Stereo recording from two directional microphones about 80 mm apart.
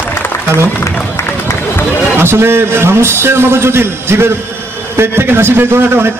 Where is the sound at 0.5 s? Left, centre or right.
Left.